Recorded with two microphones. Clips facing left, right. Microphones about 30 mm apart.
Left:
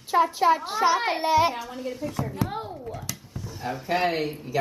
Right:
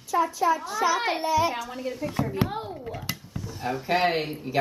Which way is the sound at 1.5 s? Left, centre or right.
Centre.